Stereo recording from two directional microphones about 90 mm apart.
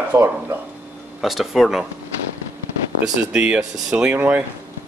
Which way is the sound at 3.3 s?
10° right (ahead or behind).